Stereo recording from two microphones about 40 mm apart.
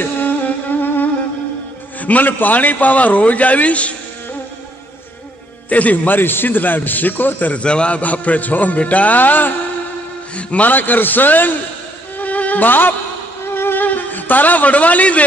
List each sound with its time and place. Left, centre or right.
0.0 s music: left
2.0 s a man's voice: left
5.7 s a man's voice: left
6.1 s a man's voice: left
7.6 s a man's voice: left
8.0 s a man's voice: left
10.3 s a man's voice: left
10.7 s a man's voice: left
12.2 s music: left
13.5 s music: left
13.8 s a man's voice: left